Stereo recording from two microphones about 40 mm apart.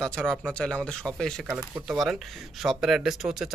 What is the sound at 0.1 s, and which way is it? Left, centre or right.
Speech, centre.